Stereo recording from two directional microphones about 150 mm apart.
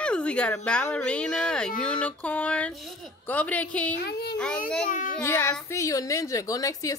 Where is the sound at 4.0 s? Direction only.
90° left.